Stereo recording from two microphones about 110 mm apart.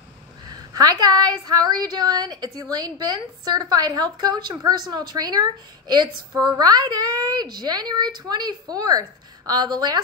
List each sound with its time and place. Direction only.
0.5 s a woman's voice: 40° right (ahead or behind)